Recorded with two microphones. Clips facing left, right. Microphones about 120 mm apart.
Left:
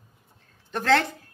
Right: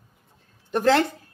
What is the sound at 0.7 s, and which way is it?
Speech, 15° right (ahead or behind).